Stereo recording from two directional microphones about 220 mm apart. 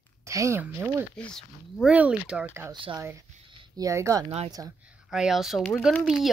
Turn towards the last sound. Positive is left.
turn(degrees=0)  # may be behind; listen again after turning